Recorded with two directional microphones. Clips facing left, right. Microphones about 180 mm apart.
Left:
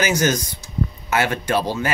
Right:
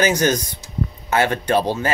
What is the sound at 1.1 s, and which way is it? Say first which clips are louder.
Speech: right 3 dB; 20° right (ahead or behind).